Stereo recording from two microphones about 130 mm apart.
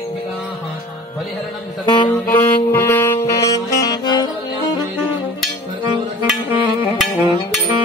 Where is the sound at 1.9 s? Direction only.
35° left (ahead or behind).